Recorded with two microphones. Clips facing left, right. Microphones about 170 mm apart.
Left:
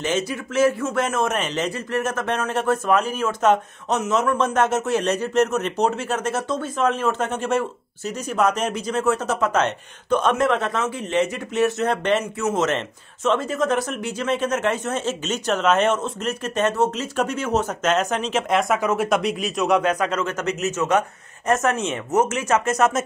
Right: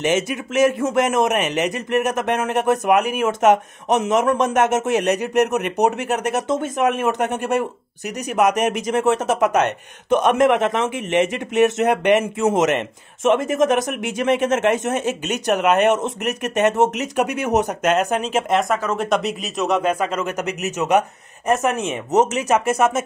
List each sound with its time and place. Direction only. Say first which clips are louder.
0.0 s a man's voice: right 4 dB; 20° right (ahead or behind)
8.8 s a man's voice: right 2 dB; 20° right (ahead or behind)